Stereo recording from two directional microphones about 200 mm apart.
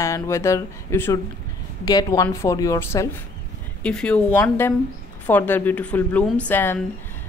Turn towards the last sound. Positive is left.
turn(degrees=10)  # may be behind; listen again after turning